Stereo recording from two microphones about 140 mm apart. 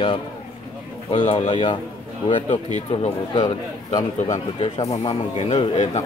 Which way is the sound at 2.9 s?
35° left (ahead or behind).